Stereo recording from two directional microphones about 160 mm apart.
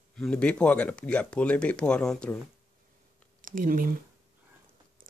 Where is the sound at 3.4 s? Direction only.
60° right (ahead or behind).